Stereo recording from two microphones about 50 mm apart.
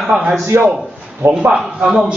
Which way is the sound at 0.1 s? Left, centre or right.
Centre.